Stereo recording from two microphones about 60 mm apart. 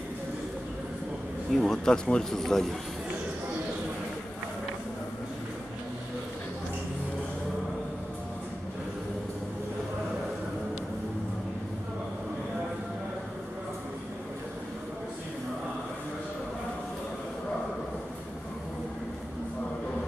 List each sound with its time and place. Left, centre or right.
1.5 s speech: centre